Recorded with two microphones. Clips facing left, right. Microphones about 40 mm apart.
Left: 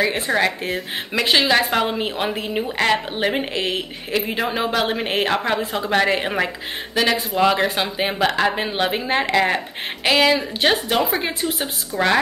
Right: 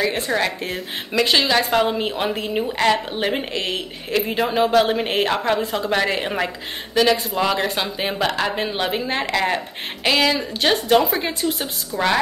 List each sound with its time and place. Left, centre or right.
0.0 s a woman's voice: centre
11.4 s speech: left